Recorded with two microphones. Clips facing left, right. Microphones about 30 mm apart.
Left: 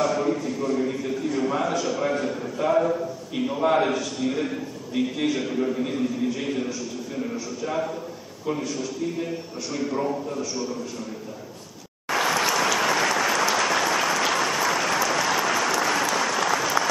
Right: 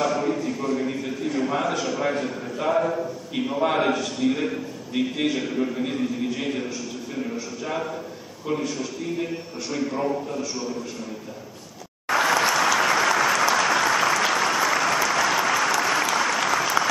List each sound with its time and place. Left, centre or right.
0.0 s a man's voice: centre
0.7 s a sound: centre
3.6 s a man's voice: centre
12.1 s applause: centre